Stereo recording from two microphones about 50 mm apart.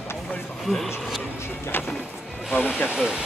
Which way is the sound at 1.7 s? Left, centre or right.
Left.